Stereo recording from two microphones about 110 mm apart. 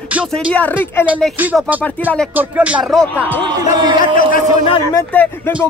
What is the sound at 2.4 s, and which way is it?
Music, 15° right (ahead or behind).